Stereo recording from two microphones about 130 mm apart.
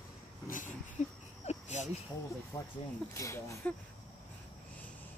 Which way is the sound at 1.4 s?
60° left (ahead or behind).